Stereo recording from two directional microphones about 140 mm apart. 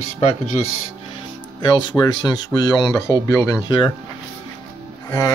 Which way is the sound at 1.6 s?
30° left (ahead or behind).